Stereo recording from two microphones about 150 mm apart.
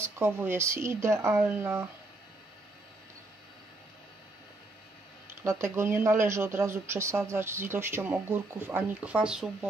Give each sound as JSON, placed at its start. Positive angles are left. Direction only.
{"t": 0.0, "sound": "speech", "side_deg": -15}
{"t": 5.4, "sound": "speech", "side_deg": -20}